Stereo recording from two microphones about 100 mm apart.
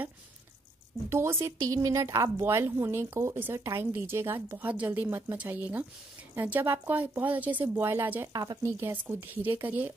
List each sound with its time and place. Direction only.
1.1 s a woman's voice: 30° right (ahead or behind)
8.3 s a woman's voice: 40° right (ahead or behind); by 9.9 s 20° right (ahead or behind)